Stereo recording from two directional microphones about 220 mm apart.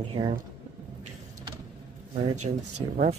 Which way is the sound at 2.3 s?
35° right (ahead or behind).